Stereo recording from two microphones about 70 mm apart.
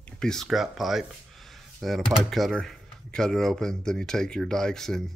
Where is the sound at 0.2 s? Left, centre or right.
Centre.